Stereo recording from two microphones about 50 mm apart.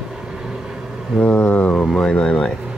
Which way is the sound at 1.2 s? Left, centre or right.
Left.